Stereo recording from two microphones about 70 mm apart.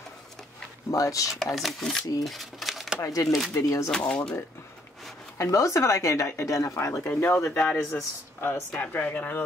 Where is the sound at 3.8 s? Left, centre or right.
Centre.